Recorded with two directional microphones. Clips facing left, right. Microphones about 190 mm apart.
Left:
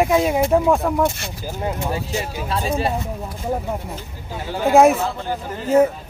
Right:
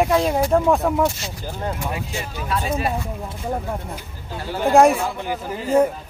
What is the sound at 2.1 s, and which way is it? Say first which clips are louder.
Speech: left 2 dB; 35° left (ahead or behind).